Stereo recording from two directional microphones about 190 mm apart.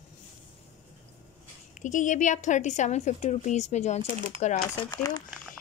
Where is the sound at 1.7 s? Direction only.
40° left (ahead or behind).